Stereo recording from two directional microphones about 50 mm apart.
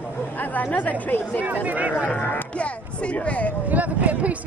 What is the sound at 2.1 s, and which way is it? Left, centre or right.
Speech, left.